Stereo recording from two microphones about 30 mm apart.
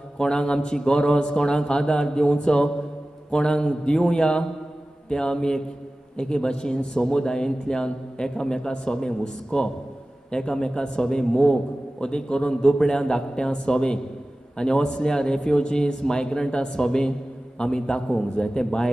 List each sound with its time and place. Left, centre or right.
0.2 s a man's voice: left